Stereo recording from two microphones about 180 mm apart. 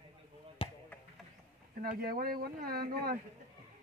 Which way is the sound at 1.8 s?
55° right (ahead or behind).